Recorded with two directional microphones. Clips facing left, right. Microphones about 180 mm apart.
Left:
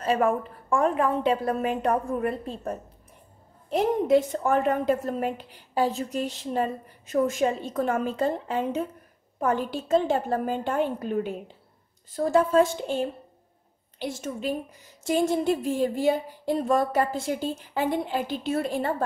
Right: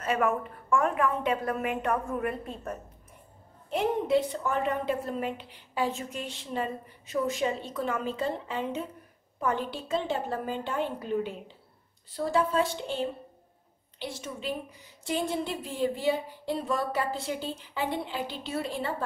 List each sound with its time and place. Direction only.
0.0 s a woman's voice: 30° left (ahead or behind)
3.7 s a woman's voice: 45° left (ahead or behind)